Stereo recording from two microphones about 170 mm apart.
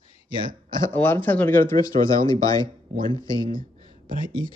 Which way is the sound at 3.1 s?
30° right (ahead or behind).